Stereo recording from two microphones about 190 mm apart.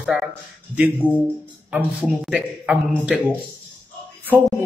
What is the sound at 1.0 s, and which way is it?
Speech, 25° right (ahead or behind).